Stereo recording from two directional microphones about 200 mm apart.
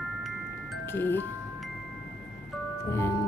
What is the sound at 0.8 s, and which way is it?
Speech, 10° left (ahead or behind).